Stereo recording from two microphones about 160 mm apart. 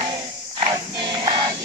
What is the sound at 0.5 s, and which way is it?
Choir, 30° right (ahead or behind).